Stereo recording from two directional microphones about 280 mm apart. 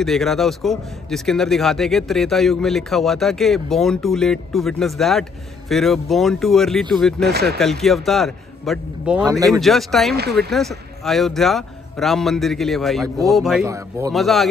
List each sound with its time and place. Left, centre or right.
0.0 s speech: centre
7.2 s speech: right
7.5 s speech: centre
14.1 s speech: centre